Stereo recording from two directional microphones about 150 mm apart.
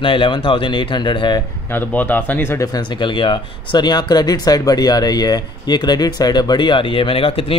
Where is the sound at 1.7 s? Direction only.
10° left (ahead or behind); by 7.5 s 35° left (ahead or behind).